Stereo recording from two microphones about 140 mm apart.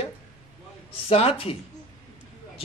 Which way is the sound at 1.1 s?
45° left (ahead or behind).